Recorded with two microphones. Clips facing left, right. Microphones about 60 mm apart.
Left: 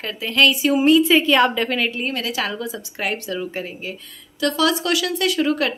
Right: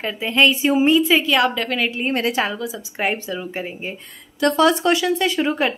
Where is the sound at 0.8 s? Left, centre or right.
Centre.